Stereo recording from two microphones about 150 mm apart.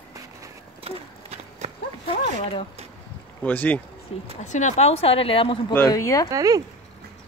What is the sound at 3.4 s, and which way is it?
Speech, 10° left (ahead or behind).